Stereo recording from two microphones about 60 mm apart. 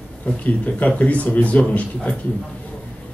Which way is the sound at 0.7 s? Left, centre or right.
Left.